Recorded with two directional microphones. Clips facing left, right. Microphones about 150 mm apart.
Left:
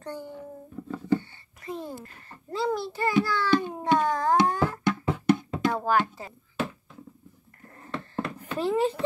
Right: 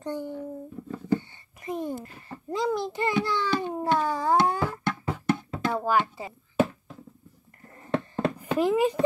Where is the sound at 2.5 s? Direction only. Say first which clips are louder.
Right 1 dB; 15° right (ahead or behind).